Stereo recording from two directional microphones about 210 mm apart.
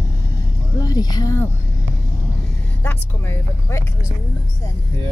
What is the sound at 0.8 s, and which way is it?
Speech, 20° left (ahead or behind).